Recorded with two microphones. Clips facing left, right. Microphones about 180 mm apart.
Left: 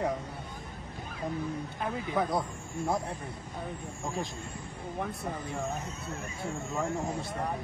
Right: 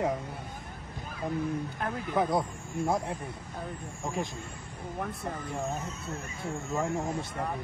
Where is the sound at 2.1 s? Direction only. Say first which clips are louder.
Right 3 dB; 25° right (ahead or behind).